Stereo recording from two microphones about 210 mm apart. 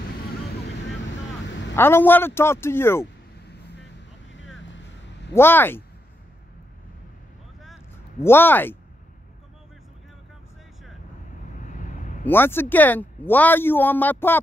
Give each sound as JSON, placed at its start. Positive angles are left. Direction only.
{"t": 1.8, "sound": "speech", "side_deg": 10}
{"t": 4.3, "sound": "vehicle", "side_deg": 60}
{"t": 5.3, "sound": "speech", "side_deg": 10}
{"t": 8.2, "sound": "speech", "side_deg": 10}
{"t": 11.7, "sound": "a sound", "side_deg": 35}
{"t": 12.3, "sound": "speech", "side_deg": 10}